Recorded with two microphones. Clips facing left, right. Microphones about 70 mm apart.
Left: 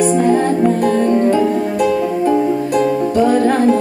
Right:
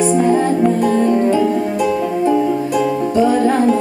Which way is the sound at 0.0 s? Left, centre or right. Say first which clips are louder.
Left 1 dB; centre.